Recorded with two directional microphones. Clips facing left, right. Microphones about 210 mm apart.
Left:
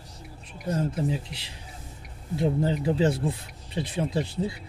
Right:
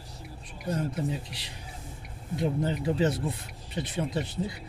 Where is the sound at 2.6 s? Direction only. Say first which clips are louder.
Left 2 dB; 25° left (ahead or behind).